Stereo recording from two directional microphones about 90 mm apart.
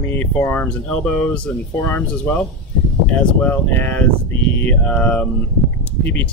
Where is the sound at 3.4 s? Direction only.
20° left (ahead or behind).